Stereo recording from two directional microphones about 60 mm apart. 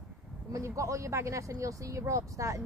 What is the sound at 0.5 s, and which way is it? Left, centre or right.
Speech, right.